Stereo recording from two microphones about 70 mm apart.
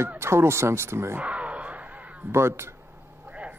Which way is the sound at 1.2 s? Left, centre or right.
Centre.